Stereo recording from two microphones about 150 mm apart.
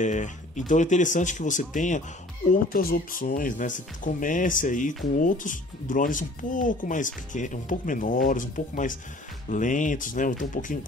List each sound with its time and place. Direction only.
0.0 s speech: 55° left (ahead or behind)
2.5 s speech: 75° left (ahead or behind)